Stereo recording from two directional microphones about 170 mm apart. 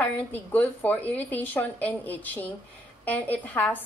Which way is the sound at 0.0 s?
10° left (ahead or behind).